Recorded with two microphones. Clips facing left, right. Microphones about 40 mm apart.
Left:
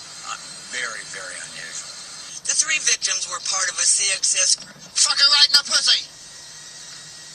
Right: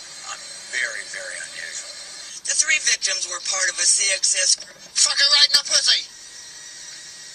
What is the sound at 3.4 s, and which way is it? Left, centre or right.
Speech, right.